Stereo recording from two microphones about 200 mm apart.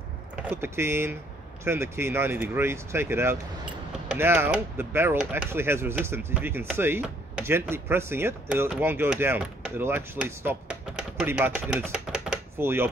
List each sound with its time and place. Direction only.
0.4 s speech: 10° right (ahead or behind)